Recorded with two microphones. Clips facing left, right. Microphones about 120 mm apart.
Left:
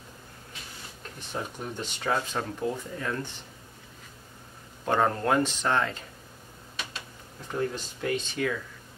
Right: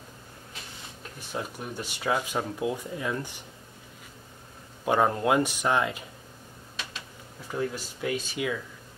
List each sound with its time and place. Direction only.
1.3 s speech: 10° right (ahead or behind)
4.8 s speech: 10° right (ahead or behind)
7.5 s speech: 10° right (ahead or behind)